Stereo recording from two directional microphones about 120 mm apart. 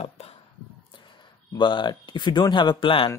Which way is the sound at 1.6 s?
40° left (ahead or behind).